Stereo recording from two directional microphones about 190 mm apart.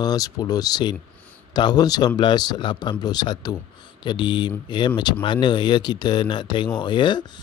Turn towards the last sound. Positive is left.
turn(degrees=25)  # may be behind; listen again after turning